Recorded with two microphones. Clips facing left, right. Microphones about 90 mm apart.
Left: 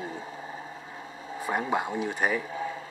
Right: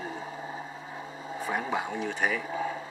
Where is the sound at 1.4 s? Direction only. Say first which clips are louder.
Left 3 dB; 5° left (ahead or behind).